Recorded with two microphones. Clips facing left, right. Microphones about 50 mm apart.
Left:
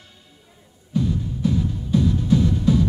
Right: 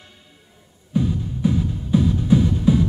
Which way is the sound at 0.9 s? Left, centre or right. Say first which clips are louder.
Right 1 dB; centre.